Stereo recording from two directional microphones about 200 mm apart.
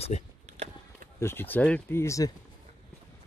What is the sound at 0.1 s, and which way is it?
Speech, 35° left (ahead or behind).